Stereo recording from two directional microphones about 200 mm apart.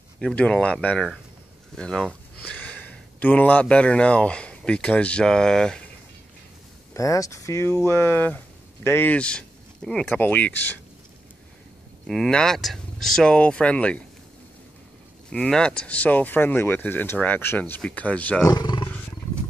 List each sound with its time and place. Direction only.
0.2 s speech: 5° left (ahead or behind)
6.9 s speech: 15° left (ahead or behind)
12.1 s speech: 5° left (ahead or behind)
15.2 s speech: 5° left (ahead or behind)
18.5 s roar: 20° left (ahead or behind)